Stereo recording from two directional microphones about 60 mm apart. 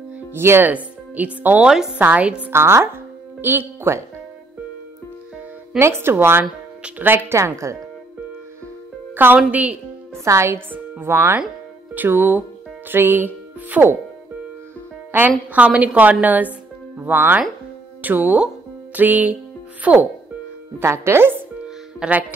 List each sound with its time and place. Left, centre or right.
0.3 s speech: right
0.7 s speech: right
2.2 s a woman's voice: centre
2.5 s speech: right
5.8 s speech: right
7.3 s a woman's voice: right
9.1 s a woman's voice: right
10.2 s a woman's voice: right
10.7 s speech: right
11.9 s speech: right
15.1 s a woman's voice: right
20.8 s speech: right
22.0 s music: centre